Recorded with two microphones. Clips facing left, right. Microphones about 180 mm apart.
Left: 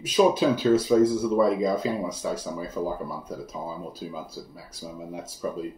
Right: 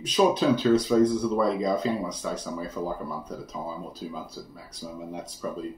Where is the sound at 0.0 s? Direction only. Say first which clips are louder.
Left 1 dB; 10° left (ahead or behind).